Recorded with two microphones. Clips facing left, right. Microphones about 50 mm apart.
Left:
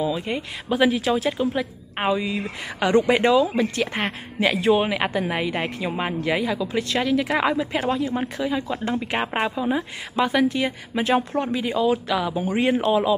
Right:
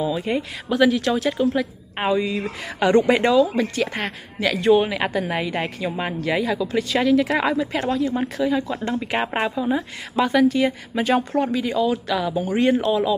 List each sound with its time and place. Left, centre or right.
0.3 s a woman's voice: centre
0.7 s a woman's voice: centre
4.0 s speech: left
4.6 s a woman's voice: centre